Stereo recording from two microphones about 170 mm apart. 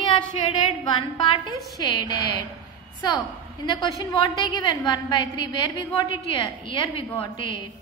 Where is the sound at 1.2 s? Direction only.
30° left (ahead or behind).